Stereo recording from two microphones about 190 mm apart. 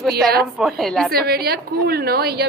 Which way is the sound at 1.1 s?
55° right (ahead or behind).